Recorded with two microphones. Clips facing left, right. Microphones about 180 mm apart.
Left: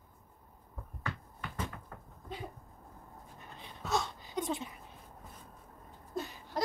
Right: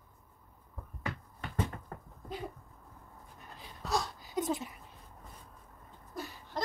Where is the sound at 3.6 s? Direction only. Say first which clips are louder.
Even; centre (ahead or behind).